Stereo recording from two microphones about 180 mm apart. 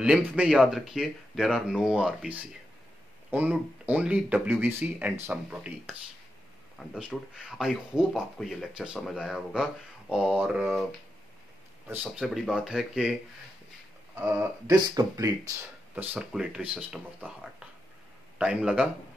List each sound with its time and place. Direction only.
0.0 s speech: 5° right (ahead or behind)
11.9 s speech: 10° right (ahead or behind)
14.7 s speech: 20° right (ahead or behind)
15.9 s speech: 10° right (ahead or behind)